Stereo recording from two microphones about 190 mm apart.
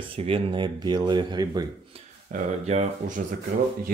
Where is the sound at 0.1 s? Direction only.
30° right (ahead or behind).